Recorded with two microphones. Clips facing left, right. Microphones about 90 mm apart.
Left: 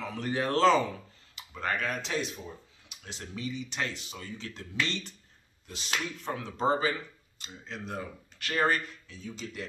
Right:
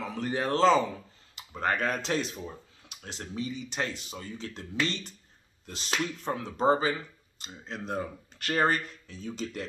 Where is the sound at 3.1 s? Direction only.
35° right (ahead or behind).